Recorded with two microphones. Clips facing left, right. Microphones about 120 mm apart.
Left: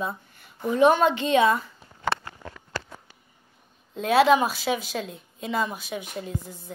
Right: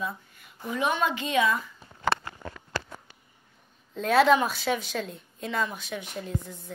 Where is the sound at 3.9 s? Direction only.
5° left (ahead or behind).